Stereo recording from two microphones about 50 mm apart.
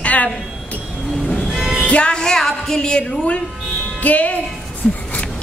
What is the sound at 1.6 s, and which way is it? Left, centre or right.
Music, centre.